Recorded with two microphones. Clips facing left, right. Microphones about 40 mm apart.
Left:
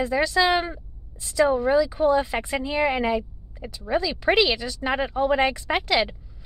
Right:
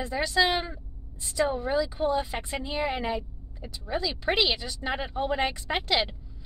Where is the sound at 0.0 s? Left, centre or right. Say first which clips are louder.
Left 4 dB; left.